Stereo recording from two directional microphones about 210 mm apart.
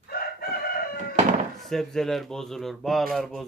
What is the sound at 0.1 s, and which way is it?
Chicken, 45° left (ahead or behind).